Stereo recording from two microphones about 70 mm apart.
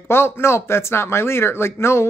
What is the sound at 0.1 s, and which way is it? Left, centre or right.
Speech, left.